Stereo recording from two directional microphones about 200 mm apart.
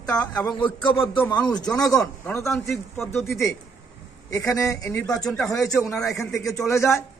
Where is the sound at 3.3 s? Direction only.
15° left (ahead or behind).